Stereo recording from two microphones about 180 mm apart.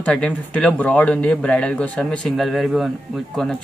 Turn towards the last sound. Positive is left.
turn(degrees=5)  # may be behind; listen again after turning